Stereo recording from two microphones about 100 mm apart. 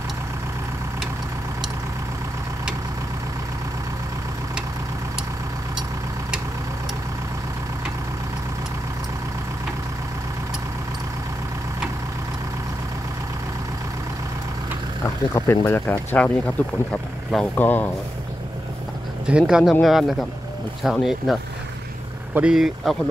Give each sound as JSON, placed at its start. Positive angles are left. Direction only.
{"t": 15.3, "sound": "speech", "side_deg": 25}
{"t": 19.2, "sound": "speech", "side_deg": -10}